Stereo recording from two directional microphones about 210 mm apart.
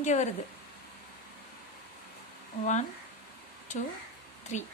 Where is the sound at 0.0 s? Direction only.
35° left (ahead or behind).